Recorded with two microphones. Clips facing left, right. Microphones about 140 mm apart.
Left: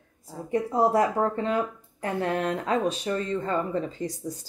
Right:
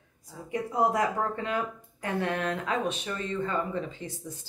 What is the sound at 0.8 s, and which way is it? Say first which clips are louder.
Speech: left 4 dB; 30° left (ahead or behind).